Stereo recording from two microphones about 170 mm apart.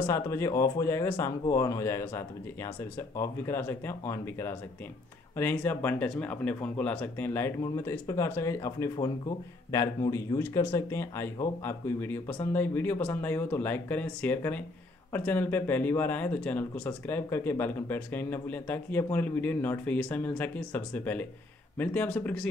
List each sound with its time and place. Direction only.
0.0 s speech: 15° left (ahead or behind)